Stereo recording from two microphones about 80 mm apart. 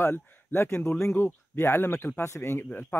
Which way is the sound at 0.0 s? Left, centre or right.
Left.